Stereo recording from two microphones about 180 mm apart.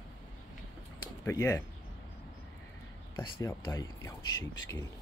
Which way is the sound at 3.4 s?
15° left (ahead or behind).